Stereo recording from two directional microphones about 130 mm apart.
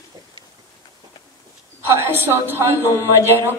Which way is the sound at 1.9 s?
15° right (ahead or behind).